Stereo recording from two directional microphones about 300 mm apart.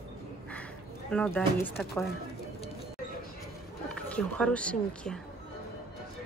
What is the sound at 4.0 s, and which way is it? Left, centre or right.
Speech, centre.